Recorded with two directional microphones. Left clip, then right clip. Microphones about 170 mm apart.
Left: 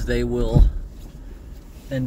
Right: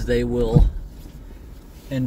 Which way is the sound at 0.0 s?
20° right (ahead or behind).